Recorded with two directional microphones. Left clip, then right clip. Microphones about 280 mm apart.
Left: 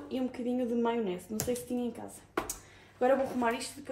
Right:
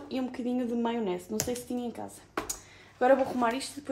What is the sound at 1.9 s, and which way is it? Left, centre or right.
Speech, centre.